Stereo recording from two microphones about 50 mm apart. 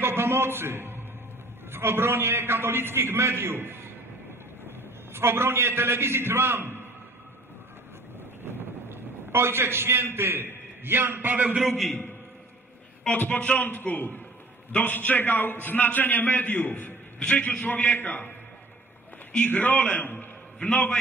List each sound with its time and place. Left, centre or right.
0.0 s a man's voice: right
8.5 s a man's voice: right
13.1 s a man's voice: left
19.3 s a man's voice: left